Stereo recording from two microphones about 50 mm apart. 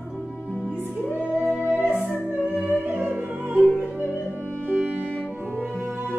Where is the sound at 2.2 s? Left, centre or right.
Right.